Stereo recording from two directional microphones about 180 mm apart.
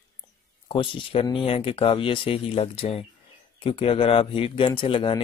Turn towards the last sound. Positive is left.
turn(degrees=25)  # may be behind; listen again after turning